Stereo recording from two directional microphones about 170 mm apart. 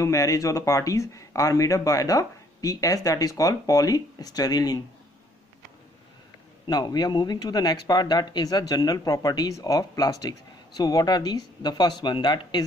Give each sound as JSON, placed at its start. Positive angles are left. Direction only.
{"t": 0.0, "sound": "a man's voice", "side_deg": 20}
{"t": 6.7, "sound": "a man's voice", "side_deg": 25}